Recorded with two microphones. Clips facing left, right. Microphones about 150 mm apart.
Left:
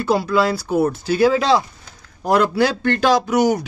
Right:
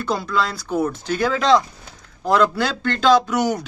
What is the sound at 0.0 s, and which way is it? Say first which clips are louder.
Speech: left 5 dB; 10° left (ahead or behind).